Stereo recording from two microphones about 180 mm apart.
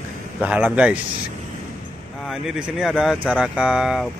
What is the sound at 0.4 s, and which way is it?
Speech, 10° right (ahead or behind).